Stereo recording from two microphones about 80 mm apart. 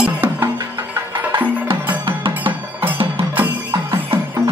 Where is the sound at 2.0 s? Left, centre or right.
Right.